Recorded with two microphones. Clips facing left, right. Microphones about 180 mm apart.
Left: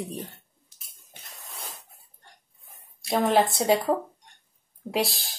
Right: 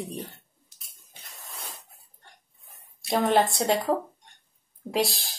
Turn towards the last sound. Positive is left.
turn(degrees=0)  # may be behind; listen again after turning